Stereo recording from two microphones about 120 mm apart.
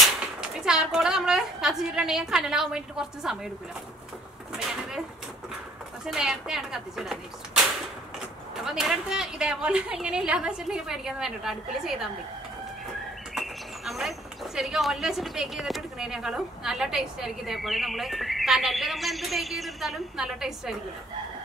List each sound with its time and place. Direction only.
0.4 s a woman's voice: 5° right (ahead or behind)
4.6 s a sound: 5° right (ahead or behind)
6.0 s a woman's voice: 5° right (ahead or behind)
8.6 s a woman's voice: 5° right (ahead or behind)
13.3 s speech: centre (ahead or behind)